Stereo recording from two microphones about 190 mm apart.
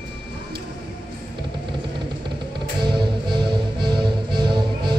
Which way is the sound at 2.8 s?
25° right (ahead or behind).